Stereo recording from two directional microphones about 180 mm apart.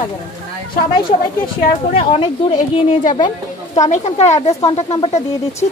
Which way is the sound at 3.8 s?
40° left (ahead or behind).